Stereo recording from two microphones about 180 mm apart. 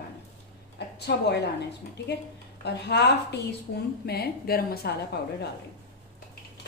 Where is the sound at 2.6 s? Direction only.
70° left (ahead or behind).